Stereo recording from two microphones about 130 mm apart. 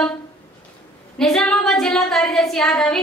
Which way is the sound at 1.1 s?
5° left (ahead or behind).